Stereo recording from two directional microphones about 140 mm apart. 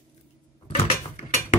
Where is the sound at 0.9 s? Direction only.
70° left (ahead or behind).